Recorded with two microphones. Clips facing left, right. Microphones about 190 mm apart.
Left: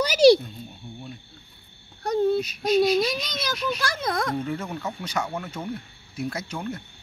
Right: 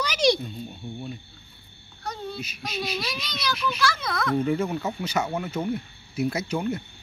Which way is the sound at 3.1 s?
50° left (ahead or behind).